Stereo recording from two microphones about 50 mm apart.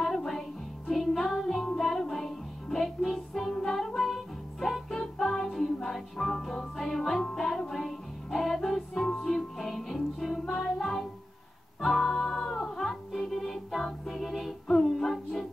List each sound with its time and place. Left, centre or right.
0.0 s music: centre